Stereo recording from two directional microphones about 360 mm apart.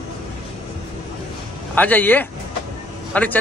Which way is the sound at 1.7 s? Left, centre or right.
Centre.